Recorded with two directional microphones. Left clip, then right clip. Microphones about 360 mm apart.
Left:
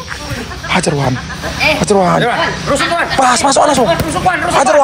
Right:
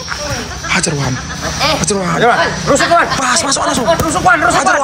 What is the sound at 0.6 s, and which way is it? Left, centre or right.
Speech, centre.